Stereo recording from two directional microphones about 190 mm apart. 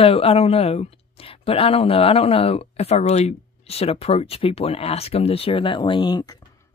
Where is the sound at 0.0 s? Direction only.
30° left (ahead or behind).